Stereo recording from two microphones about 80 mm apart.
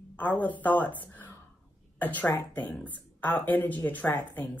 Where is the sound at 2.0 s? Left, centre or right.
Left.